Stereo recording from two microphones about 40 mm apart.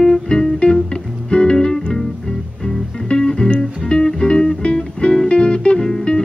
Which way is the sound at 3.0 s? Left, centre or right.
Centre.